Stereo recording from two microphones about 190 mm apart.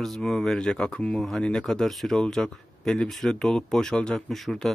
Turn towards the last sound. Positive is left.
turn(degrees=0)  # may be behind; listen again after turning